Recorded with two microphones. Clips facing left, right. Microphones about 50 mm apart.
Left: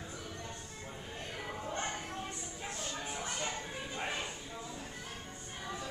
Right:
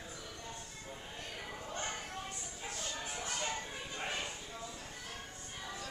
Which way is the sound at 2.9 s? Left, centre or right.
Centre.